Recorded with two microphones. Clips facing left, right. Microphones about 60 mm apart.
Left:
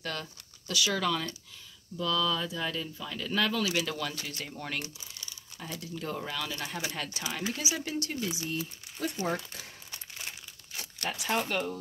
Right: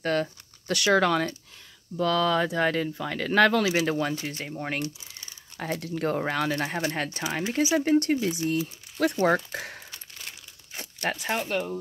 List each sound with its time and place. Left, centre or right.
0.0 s speech: right
3.7 s speech: right
5.6 s speech: right
9.0 s speech: right
10.7 s crumpling: right
11.3 s speech: centre